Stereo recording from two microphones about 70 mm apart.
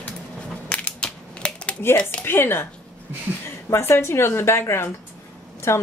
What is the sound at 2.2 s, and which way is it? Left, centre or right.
Speech, left.